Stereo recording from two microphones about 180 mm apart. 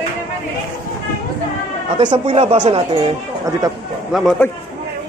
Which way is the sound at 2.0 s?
30° right (ahead or behind).